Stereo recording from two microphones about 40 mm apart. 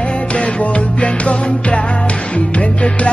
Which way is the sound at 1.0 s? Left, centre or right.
Left.